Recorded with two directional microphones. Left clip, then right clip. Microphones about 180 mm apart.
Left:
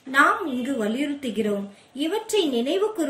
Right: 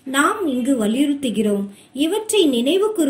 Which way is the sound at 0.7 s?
20° right (ahead or behind).